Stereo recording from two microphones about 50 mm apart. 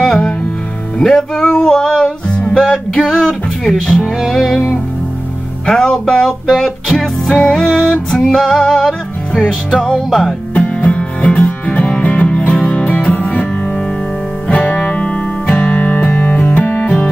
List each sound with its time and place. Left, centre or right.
0.0 s music: centre
2.2 s music: left
2.5 s music: centre
5.7 s music: centre
10.0 s music: centre
10.5 s music: left
15.6 s music: left